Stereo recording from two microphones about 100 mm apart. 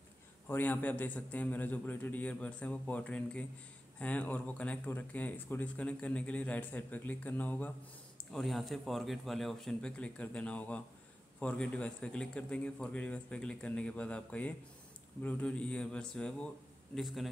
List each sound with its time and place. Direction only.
0.5 s speech: 20° left (ahead or behind)
8.3 s a man's voice: centre (ahead or behind)